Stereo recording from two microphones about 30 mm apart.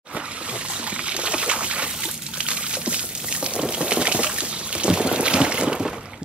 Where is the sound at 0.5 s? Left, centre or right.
Right.